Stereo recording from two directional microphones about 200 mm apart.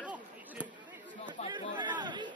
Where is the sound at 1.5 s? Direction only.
20° right (ahead or behind).